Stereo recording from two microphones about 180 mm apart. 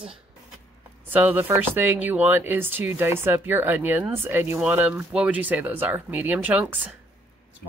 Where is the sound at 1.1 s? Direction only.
10° right (ahead or behind).